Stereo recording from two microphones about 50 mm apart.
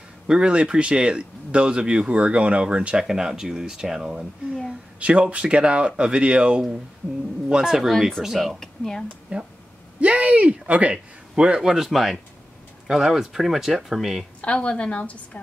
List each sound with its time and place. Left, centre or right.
0.3 s speech: centre
3.0 s speech: centre
5.0 s speech: right; by 8.5 s centre
8.5 s speech: centre
9.3 s speech: right
11.3 s speech: centre
14.4 s a woman's voice: left